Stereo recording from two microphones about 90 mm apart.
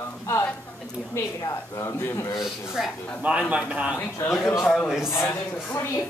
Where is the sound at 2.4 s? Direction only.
5° right (ahead or behind).